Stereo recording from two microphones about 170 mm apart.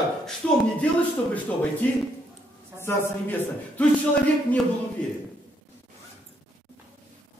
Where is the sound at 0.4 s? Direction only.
10° left (ahead or behind).